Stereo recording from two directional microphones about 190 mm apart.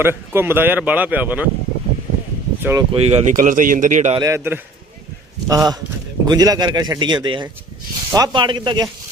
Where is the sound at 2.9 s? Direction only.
35° right (ahead or behind).